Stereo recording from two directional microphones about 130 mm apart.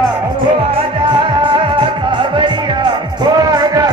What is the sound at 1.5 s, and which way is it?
Music, 40° right (ahead or behind).